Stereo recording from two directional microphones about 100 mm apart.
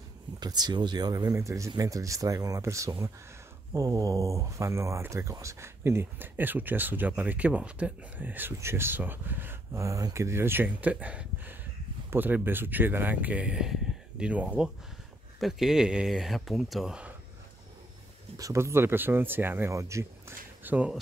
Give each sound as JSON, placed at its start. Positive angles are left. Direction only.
{"t": 0.4, "sound": "speech", "side_deg": -45}
{"t": 18.4, "sound": "speech", "side_deg": -30}